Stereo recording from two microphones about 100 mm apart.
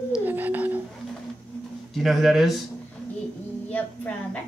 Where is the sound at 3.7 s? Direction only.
15° left (ahead or behind).